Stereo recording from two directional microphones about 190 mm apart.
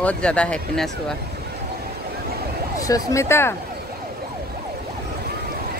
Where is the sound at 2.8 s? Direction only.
20° left (ahead or behind).